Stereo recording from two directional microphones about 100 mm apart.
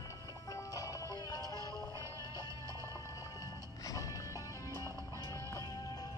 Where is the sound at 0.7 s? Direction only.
40° left (ahead or behind).